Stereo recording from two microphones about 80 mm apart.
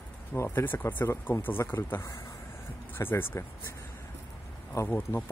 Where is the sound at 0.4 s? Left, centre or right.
Left.